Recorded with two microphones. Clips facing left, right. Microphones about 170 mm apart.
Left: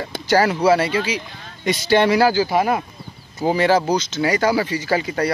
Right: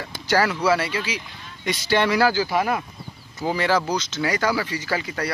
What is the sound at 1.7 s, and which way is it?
Speech, 20° left (ahead or behind).